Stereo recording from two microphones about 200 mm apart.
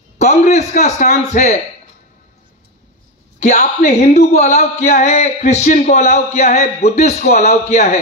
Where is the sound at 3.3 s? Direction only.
35° left (ahead or behind).